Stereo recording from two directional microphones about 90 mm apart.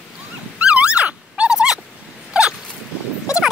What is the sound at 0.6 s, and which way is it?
Dog, 15° right (ahead or behind).